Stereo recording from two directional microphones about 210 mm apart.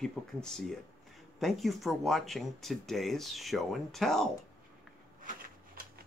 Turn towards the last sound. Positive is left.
turn(degrees=-40)  # may be behind; listen again after turning